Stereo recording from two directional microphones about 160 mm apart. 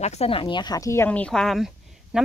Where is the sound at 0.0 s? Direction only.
40° left (ahead or behind).